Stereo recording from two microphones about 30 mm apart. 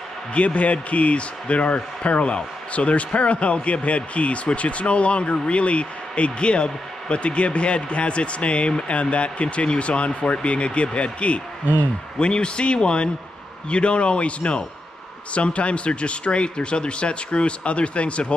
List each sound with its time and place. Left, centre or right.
0.3 s speech: left